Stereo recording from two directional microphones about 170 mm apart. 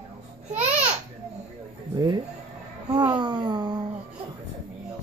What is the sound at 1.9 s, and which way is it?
Speech, 25° right (ahead or behind).